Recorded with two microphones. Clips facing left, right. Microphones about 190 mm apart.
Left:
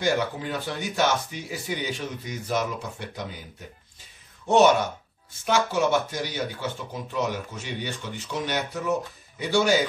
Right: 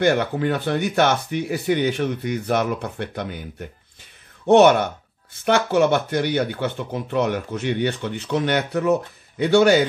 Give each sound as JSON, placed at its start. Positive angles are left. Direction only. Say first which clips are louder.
{"t": 0.0, "sound": "speech", "louder": "right 6 dB", "side_deg": -60}